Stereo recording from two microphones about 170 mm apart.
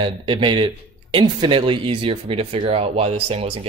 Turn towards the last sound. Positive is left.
turn(degrees=-35)  # may be behind; listen again after turning